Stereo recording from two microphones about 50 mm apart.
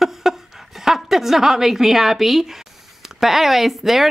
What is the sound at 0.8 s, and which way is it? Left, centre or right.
A woman's voice, centre.